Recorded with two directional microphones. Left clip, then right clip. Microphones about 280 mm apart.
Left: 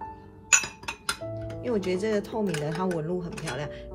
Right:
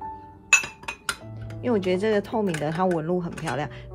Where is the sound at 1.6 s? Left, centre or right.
Right.